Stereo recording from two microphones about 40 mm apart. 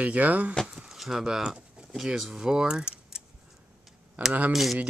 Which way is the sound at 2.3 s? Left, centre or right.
Centre.